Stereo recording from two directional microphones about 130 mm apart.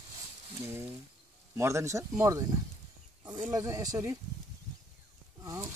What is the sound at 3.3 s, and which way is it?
Speech, 15° right (ahead or behind).